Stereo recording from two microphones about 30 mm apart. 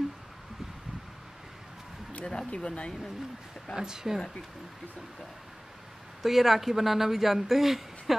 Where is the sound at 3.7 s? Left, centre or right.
Centre.